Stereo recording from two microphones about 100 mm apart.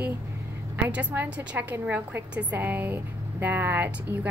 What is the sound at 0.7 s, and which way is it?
A woman's voice, 20° right (ahead or behind).